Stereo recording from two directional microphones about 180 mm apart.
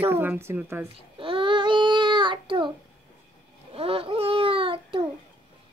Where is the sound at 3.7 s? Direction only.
30° right (ahead or behind).